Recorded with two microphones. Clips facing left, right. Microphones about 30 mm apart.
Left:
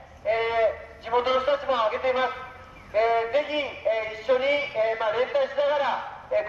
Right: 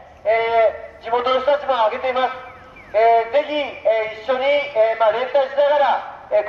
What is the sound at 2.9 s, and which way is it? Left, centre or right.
Music, centre.